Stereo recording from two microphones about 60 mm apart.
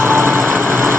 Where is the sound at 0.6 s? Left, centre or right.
Right.